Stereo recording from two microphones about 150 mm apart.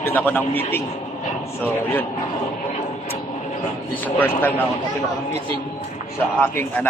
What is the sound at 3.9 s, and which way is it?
Speech, 10° left (ahead or behind).